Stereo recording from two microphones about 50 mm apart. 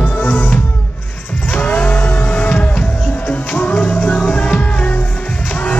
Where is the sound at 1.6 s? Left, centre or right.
Left.